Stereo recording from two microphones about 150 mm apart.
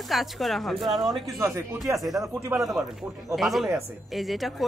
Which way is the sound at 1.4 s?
20° right (ahead or behind).